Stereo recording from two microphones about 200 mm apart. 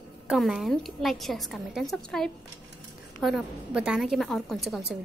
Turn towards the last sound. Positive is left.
turn(degrees=0)  # may be behind; listen again after turning